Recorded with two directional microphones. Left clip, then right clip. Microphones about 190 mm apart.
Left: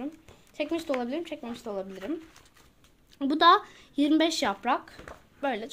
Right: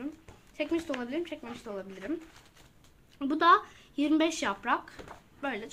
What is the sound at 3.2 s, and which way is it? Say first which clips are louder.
A woman's voice: left 3 dB; 45° left (ahead or behind).